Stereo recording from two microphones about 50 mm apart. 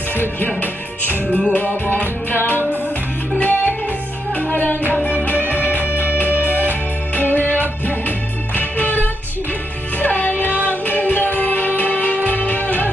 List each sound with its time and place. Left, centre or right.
0.1 s speech: left
1.5 s music: left
5.9 s music: left
8.5 s music: left
10.5 s music: right
10.9 s music: left